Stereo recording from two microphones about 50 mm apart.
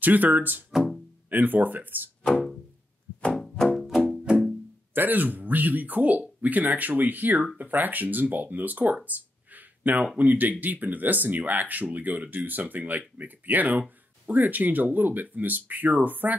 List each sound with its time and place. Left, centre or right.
0.0 s speech: right
3.2 s music: left
3.4 s music: centre
3.8 s music: centre
4.9 s speech: right
9.0 s a sound: right
10.1 s speech: right